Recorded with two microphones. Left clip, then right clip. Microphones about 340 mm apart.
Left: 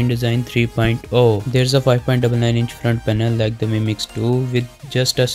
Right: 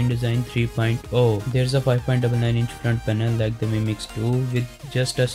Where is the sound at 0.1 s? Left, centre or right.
Centre.